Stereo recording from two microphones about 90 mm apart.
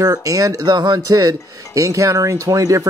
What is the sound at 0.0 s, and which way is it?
Speech, 40° right (ahead or behind).